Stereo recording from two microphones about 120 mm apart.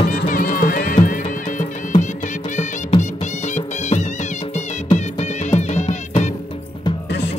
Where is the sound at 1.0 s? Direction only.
90° left.